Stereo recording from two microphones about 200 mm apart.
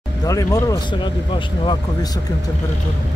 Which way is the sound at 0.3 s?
15° left (ahead or behind).